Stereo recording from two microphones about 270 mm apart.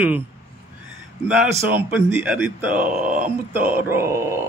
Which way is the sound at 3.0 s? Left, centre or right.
Right.